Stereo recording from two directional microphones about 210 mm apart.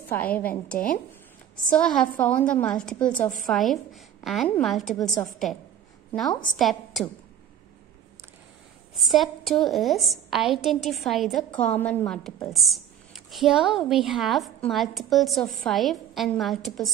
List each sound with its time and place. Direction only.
0.1 s a woman's voice: 10° left (ahead or behind)
1.7 s a woman's voice: 5° left (ahead or behind)
3.2 s a woman's voice: 40° left (ahead or behind)
3.4 s a woman's voice: centre (ahead or behind)
8.9 s a woman's voice: centre (ahead or behind)